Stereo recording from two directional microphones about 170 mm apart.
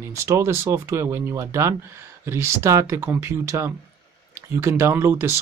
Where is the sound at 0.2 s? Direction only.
15° right (ahead or behind).